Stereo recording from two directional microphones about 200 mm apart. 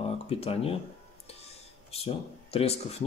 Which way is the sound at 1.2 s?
30° left (ahead or behind).